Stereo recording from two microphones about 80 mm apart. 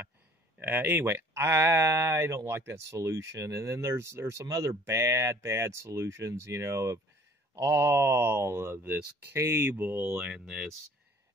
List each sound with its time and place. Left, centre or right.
0.6 s speech: right
10.1 s speech: centre